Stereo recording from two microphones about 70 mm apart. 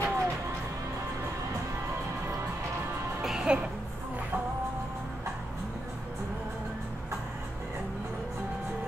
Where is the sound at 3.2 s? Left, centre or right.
Centre.